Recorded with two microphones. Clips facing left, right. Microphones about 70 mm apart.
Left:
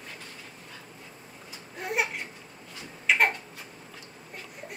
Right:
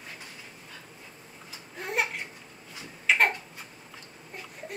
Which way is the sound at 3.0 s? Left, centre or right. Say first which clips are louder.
Even; centre.